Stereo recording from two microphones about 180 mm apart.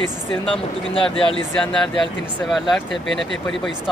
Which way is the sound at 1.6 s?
5° left (ahead or behind).